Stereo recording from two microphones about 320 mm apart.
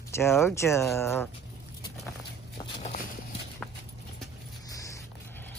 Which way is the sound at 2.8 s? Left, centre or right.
Left.